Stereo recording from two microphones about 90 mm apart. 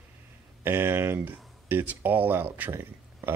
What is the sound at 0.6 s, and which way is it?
Speech, 25° right (ahead or behind).